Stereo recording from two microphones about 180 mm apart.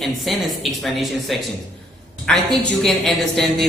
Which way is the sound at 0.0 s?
Centre (ahead or behind).